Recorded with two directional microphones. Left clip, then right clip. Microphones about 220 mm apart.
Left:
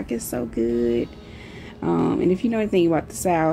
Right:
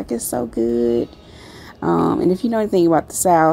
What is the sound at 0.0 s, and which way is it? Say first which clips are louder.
Speech: right 5 dB; 30° right (ahead or behind).